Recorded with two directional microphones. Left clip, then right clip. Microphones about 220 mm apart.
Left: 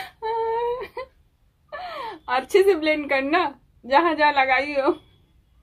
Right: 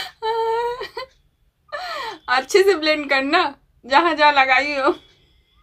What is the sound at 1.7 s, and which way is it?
A woman's voice, 5° right (ahead or behind).